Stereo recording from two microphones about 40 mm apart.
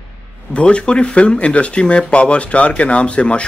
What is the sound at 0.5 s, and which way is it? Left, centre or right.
Speech, left.